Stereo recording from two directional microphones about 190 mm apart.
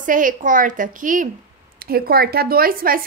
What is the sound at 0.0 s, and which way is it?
A woman's voice, 45° right (ahead or behind).